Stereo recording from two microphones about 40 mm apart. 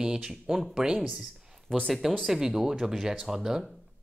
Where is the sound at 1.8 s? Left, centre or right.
Centre.